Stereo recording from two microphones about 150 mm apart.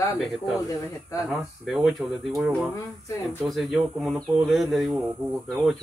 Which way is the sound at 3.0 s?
20° left (ahead or behind).